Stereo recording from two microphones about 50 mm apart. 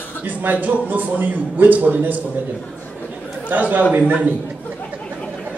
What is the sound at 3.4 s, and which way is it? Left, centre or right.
Speech, right.